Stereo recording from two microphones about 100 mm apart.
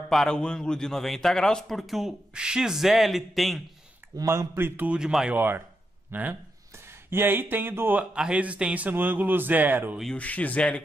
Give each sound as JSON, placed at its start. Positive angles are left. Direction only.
{"t": 0.1, "sound": "a man's voice", "side_deg": 5}
{"t": 4.2, "sound": "a man's voice", "side_deg": -35}
{"t": 4.6, "sound": "speech", "side_deg": -20}
{"t": 4.9, "sound": "a man's voice", "side_deg": -5}
{"t": 6.1, "sound": "speech", "side_deg": -20}
{"t": 8.1, "sound": "a man's voice", "side_deg": -10}
{"t": 10.1, "sound": "speech", "side_deg": 15}